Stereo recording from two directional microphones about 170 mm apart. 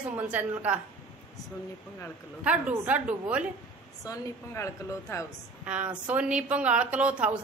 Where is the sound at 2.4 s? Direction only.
10° right (ahead or behind).